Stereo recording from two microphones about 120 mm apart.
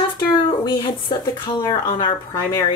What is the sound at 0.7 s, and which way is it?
A woman's voice, 40° left (ahead or behind).